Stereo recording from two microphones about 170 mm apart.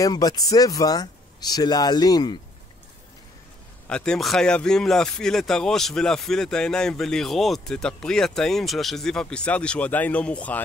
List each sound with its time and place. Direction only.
0.0 s speech: 20° left (ahead or behind)
3.8 s speech: 5° left (ahead or behind)